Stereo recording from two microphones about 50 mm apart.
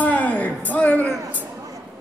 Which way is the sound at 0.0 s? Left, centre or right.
Left.